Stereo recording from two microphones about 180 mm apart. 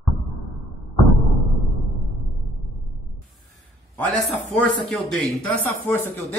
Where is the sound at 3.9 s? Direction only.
10° left (ahead or behind).